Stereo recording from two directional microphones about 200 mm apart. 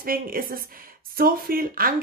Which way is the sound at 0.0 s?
45° right (ahead or behind).